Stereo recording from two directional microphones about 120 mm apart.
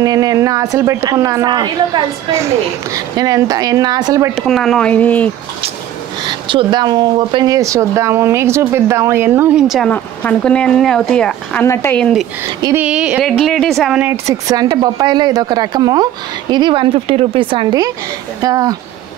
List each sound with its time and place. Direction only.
0.0 s speech: 30° right (ahead or behind)
4.4 s speech: 5° left (ahead or behind)
6.2 s speech: 45° right (ahead or behind); by 9.6 s 20° right (ahead or behind)
9.6 s speech: 5° right (ahead or behind)
9.8 s speech: 15° left (ahead or behind)
11.6 s speech: 20° left (ahead or behind)
12.7 s speech: 10° right (ahead or behind)
13.4 s speech: 5° left (ahead or behind)
13.9 s speech: 20° right (ahead or behind)